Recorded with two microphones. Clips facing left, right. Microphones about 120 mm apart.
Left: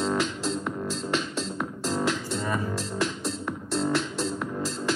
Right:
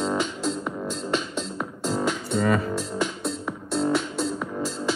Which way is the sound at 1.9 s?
5° right (ahead or behind).